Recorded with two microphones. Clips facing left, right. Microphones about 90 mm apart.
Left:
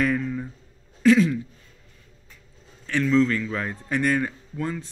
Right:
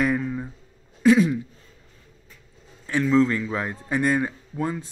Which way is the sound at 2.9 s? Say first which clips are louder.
Right 1 dB; 15° right (ahead or behind).